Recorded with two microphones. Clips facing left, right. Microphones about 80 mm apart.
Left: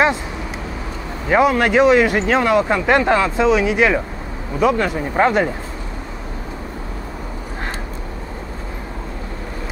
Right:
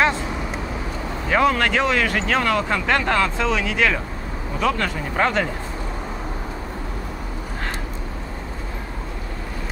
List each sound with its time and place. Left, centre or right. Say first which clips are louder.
1.3 s speech: left 4 dB; centre